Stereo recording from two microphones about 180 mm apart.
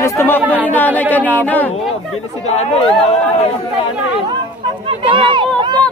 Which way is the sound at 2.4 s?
35° left (ahead or behind).